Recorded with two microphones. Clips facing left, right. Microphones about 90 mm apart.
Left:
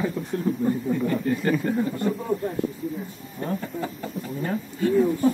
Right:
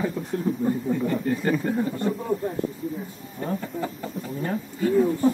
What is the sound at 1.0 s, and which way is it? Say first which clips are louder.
Speech: left 1 dB; 25° right (ahead or behind).